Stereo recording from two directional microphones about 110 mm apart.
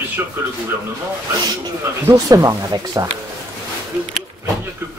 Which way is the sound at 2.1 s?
30° right (ahead or behind).